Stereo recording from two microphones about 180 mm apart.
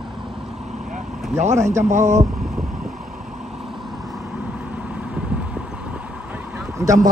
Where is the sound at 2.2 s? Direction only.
Centre (ahead or behind).